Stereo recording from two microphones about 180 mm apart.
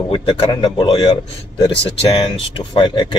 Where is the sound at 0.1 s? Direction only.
30° left (ahead or behind).